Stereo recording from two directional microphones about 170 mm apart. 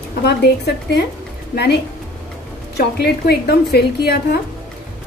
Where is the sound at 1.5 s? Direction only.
75° left (ahead or behind).